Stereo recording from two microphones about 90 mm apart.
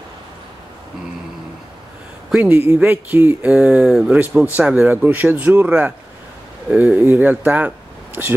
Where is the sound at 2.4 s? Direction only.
25° right (ahead or behind).